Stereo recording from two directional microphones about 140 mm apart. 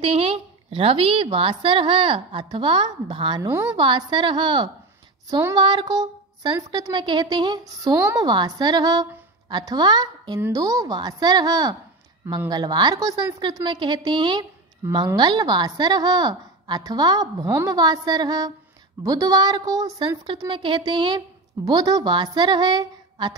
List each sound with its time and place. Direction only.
0.0 s a woman's voice: 45° right (ahead or behind)
14.8 s a woman's voice: 20° right (ahead or behind)
15.1 s a woman's voice: 30° right (ahead or behind)